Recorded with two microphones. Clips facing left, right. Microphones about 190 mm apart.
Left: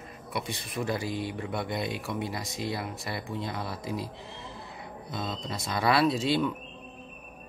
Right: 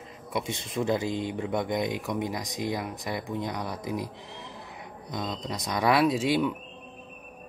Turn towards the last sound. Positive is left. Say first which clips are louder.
# right 2 dB
turn(degrees=-15)  # may be behind; listen again after turning